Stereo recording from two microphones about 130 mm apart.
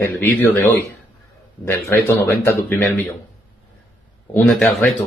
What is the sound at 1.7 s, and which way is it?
Speech, 20° left (ahead or behind).